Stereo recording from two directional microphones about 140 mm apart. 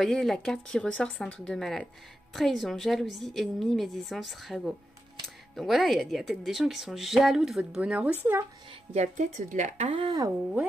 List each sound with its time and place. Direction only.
0.0 s a woman's voice: centre (ahead or behind); by 8.5 s 15° right (ahead or behind)
8.9 s speech: 55° right (ahead or behind)
9.9 s speech: 35° right (ahead or behind)